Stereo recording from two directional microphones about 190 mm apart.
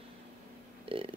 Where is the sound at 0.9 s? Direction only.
30° right (ahead or behind).